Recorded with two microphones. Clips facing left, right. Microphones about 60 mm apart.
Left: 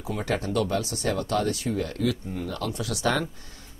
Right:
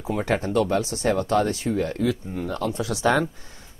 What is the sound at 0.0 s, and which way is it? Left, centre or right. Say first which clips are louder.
Speech: right 4 dB; right.